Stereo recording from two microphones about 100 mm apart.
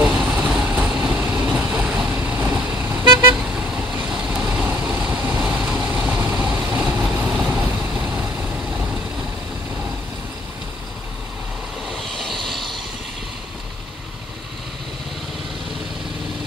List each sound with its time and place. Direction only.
0.0 s vehicle: 10° right (ahead or behind)
3.3 s vehicle: 10° right (ahead or behind)
5.9 s vehicle: 20° right (ahead or behind)
11.9 s vehicle: 5° left (ahead or behind)